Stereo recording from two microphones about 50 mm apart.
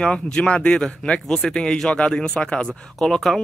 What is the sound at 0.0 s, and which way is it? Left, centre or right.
Speech, centre.